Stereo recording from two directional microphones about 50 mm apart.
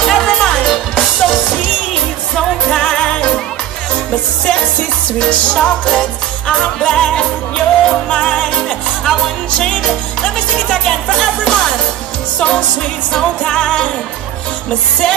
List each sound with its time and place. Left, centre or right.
0.0 s music: centre
2.8 s music: centre
9.6 s music: centre